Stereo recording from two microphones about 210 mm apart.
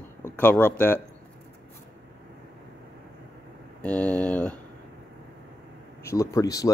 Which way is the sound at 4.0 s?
5° left (ahead or behind).